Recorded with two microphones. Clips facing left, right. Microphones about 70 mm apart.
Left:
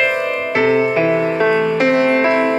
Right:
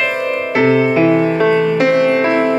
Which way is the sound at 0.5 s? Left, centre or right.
Left.